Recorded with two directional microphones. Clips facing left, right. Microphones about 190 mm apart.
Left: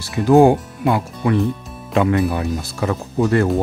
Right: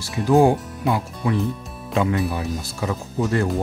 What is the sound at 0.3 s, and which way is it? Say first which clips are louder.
Speech: left 4 dB; 65° left (ahead or behind).